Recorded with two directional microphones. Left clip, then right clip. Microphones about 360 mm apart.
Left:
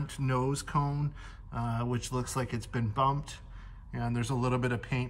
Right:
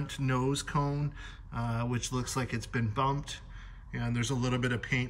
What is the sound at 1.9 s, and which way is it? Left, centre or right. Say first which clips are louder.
Speech: even; centre.